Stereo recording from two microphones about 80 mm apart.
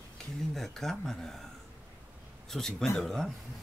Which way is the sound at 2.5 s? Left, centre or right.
Centre.